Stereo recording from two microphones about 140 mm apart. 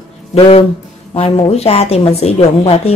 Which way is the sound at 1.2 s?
45° left (ahead or behind).